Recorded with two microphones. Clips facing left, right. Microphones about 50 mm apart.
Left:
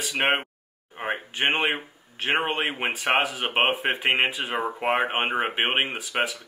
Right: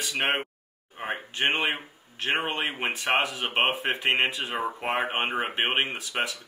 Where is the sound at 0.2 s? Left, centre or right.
Left.